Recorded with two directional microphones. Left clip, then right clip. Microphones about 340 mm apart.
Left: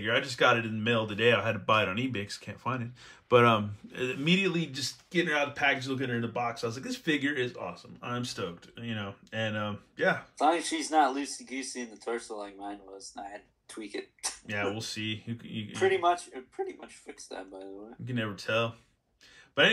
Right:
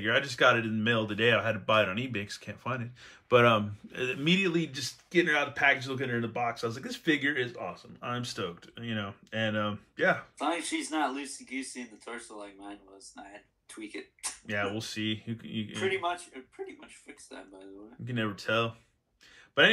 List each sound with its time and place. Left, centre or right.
0.0 s speech: centre
10.3 s speech: left
14.4 s speech: centre
15.8 s speech: left
18.0 s speech: centre